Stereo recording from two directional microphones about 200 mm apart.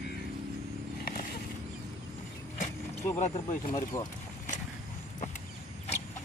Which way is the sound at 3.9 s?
15° left (ahead or behind).